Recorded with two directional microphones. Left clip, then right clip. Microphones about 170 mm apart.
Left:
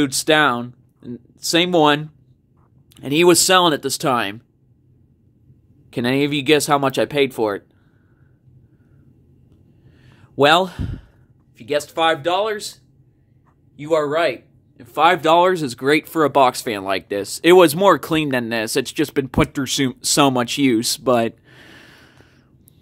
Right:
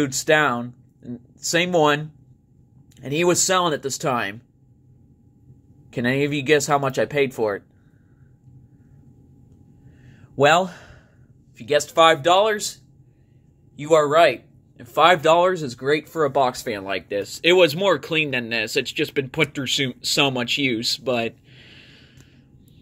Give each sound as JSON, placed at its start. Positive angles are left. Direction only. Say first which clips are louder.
{"t": 0.0, "sound": "speech", "louder": "left 3 dB", "side_deg": 25}
{"t": 5.9, "sound": "speech", "louder": "left 3 dB", "side_deg": 20}
{"t": 10.0, "sound": "a sound", "louder": "left 2 dB", "side_deg": 25}
{"t": 11.5, "sound": "speech", "louder": "right 1 dB", "side_deg": -10}
{"t": 12.0, "sound": "speech", "louder": "right 3 dB", "side_deg": -25}
{"t": 14.8, "sound": "speech", "louder": "even", "side_deg": 0}
{"t": 15.1, "sound": "speech", "louder": "left 2 dB", "side_deg": 15}
{"t": 15.4, "sound": "speech", "louder": "left 3 dB", "side_deg": 35}